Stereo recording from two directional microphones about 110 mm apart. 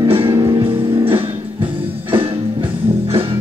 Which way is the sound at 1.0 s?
55° right (ahead or behind).